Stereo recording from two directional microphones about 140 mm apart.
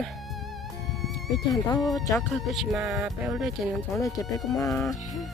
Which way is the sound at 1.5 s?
25° left (ahead or behind).